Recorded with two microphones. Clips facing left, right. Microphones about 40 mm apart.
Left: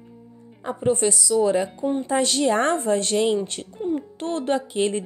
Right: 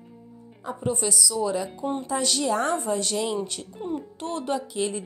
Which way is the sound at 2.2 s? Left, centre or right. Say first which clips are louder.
Left 5 dB; left.